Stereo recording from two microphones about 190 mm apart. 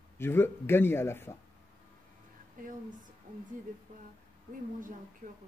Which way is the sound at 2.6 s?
45° right (ahead or behind).